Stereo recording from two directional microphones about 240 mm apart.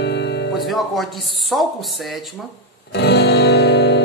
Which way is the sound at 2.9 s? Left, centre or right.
Left.